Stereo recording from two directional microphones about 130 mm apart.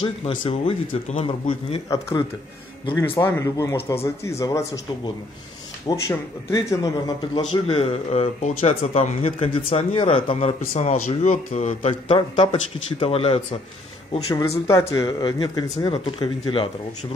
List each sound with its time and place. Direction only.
0.0 s speech: 40° left (ahead or behind)
1.9 s a man's voice: 25° left (ahead or behind)
5.9 s a man's voice: 25° left (ahead or behind)
7.6 s speech: 50° left (ahead or behind)
10.7 s speech: 60° left (ahead or behind)
14.1 s a man's voice: 25° left (ahead or behind)